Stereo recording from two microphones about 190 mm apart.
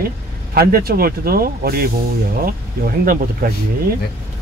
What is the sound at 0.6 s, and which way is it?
Speech, 50° right (ahead or behind).